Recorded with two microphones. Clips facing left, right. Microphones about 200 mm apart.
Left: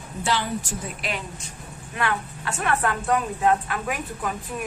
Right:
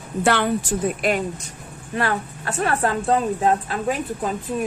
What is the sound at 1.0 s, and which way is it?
Speech, 50° right (ahead or behind).